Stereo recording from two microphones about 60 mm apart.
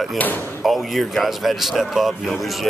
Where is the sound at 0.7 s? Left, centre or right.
Centre.